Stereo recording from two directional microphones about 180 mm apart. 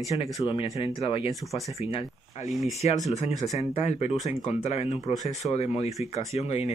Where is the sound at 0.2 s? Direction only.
30° left (ahead or behind).